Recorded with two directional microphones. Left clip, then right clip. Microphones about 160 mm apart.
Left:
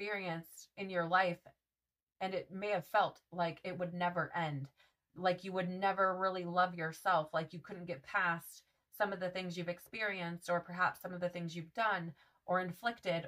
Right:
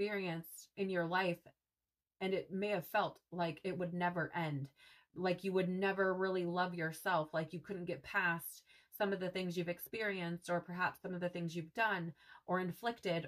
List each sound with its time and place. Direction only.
0.0 s speech: 40° left (ahead or behind)